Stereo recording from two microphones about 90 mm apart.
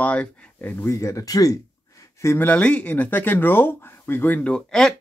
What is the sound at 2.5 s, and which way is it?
A man's voice, 15° left (ahead or behind).